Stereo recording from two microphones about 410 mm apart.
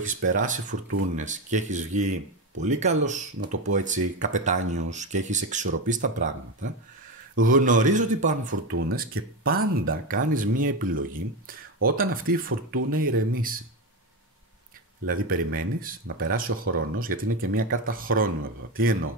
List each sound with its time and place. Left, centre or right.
0.0 s speech: centre
15.0 s speech: right